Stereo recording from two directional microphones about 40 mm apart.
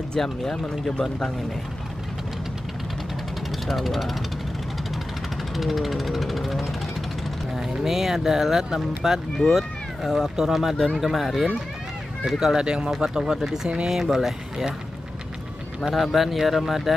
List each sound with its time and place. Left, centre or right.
0.1 s speech: centre
3.6 s speech: centre
5.6 s music: centre
7.7 s speech: centre
12.6 s speech: right
15.8 s speech: centre